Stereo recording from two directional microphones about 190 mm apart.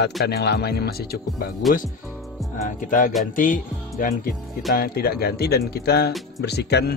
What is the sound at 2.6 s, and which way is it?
Speech, 45° left (ahead or behind).